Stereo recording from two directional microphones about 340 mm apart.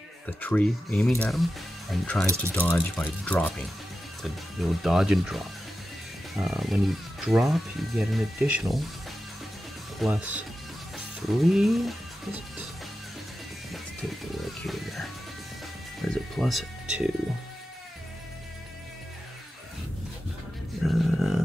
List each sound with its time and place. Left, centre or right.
0.4 s speech: centre
9.9 s speech: centre
14.3 s speech: centre
16.0 s music: centre
20.8 s a sound: centre